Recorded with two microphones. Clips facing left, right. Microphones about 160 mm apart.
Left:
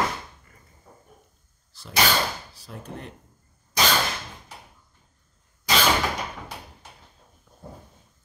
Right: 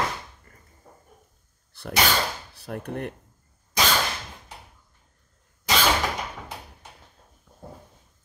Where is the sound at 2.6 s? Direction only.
60° right (ahead or behind).